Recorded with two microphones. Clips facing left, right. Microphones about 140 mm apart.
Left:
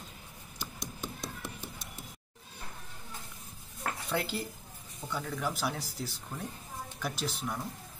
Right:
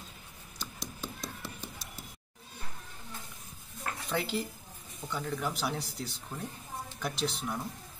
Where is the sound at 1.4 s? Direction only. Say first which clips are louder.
Left 1 dB; 20° left (ahead or behind).